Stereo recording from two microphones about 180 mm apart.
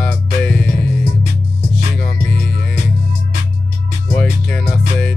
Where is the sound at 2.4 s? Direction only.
65° left (ahead or behind).